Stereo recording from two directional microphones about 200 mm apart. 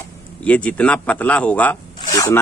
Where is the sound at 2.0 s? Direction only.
15° left (ahead or behind).